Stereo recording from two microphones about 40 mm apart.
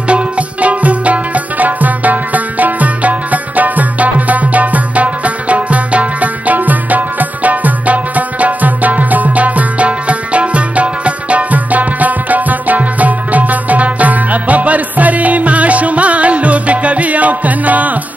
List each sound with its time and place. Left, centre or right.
0.1 s music: right